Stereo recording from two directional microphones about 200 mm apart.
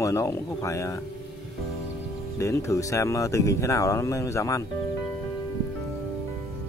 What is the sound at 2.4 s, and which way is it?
Speech, 15° left (ahead or behind).